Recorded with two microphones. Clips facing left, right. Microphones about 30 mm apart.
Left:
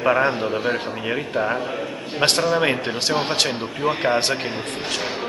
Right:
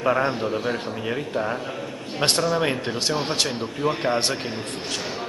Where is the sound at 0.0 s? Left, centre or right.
Left.